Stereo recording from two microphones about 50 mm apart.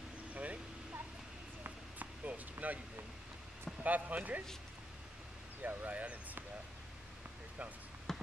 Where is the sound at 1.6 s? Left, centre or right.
Right.